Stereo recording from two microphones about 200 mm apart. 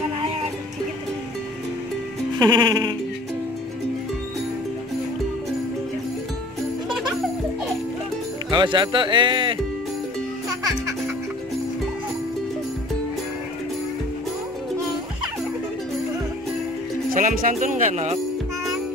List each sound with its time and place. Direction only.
2.3 s speech: 20° right (ahead or behind)
6.9 s music: centre (ahead or behind)
8.5 s speech: 25° right (ahead or behind)
17.1 s speech: 40° right (ahead or behind)